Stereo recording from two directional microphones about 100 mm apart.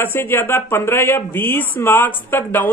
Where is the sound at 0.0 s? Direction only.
20° left (ahead or behind).